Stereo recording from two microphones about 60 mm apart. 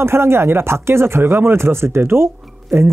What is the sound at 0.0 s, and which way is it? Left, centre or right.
Speech, right.